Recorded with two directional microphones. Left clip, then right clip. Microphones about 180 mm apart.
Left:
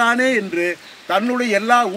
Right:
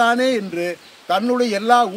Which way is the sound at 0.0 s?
60° right (ahead or behind).